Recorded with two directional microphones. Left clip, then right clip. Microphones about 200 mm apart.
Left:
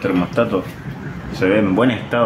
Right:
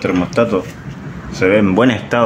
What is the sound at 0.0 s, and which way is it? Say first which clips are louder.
Speech: right 3 dB; 35° right (ahead or behind).